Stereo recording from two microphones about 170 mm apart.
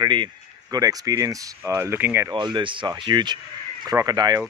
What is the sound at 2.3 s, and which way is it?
Speech, 30° right (ahead or behind).